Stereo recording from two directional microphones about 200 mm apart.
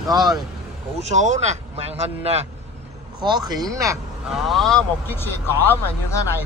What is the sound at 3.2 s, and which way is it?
Speech, 20° right (ahead or behind).